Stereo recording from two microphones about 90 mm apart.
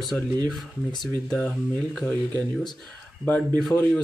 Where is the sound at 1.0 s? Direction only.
5° left (ahead or behind).